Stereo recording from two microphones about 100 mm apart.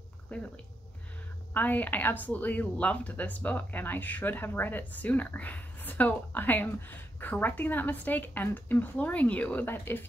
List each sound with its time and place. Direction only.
0.3 s a woman's voice: 10° left (ahead or behind)
1.5 s a woman's voice: 15° left (ahead or behind)